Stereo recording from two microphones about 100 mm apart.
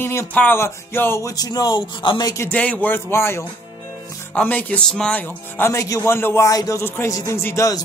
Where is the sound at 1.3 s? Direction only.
40° left (ahead or behind).